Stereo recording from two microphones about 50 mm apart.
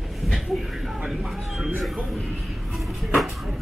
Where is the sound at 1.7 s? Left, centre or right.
Centre.